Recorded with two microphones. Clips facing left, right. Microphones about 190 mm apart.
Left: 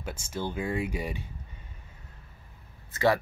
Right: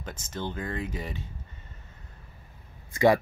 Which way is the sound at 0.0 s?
10° left (ahead or behind).